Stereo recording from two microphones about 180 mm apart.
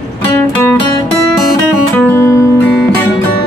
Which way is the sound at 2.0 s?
15° left (ahead or behind).